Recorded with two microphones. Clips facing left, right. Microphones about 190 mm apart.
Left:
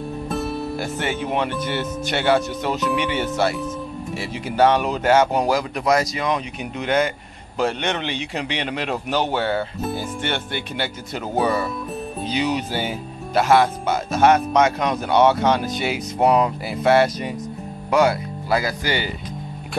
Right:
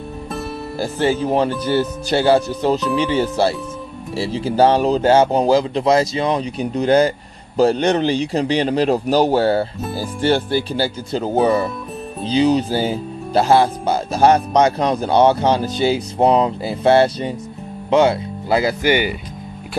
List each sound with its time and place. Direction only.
0.7 s speech: 30° right (ahead or behind)